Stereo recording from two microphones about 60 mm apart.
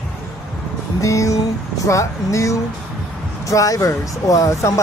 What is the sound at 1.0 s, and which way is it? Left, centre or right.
Speech, left.